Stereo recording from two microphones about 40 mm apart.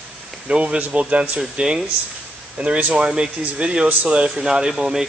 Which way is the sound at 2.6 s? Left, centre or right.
Right.